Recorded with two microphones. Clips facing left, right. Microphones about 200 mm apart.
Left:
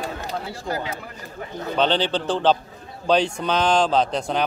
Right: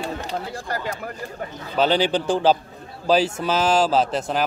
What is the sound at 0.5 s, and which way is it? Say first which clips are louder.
Speech: even; 50° right (ahead or behind).